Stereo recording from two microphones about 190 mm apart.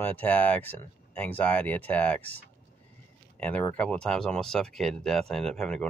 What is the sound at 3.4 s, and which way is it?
Speech, 10° left (ahead or behind).